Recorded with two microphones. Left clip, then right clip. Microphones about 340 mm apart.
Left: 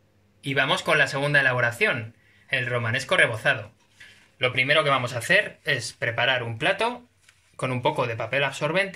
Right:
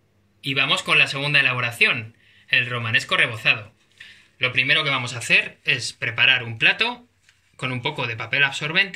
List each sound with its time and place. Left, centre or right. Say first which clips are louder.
0.4 s speech: right 2 dB; centre
4.6 s speech: right 1 dB; left